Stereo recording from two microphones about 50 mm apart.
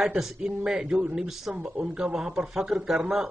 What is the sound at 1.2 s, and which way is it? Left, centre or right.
Speech, centre.